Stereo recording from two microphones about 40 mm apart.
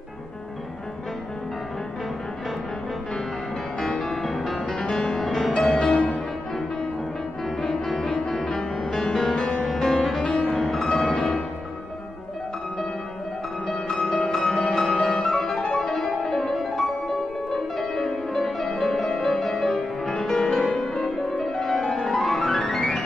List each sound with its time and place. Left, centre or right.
3.9 s music: centre
4.2 s music: centre
7.6 s music: centre
9.4 s music: left
9.7 s music: centre
13.7 s music: centre